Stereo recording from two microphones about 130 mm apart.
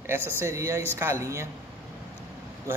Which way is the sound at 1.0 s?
20° right (ahead or behind).